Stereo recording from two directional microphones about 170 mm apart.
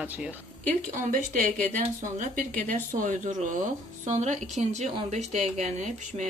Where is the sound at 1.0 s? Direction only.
50° right (ahead or behind).